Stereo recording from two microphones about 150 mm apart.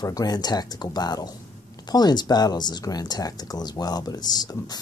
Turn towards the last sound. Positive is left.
turn(degrees=25)  # may be behind; listen again after turning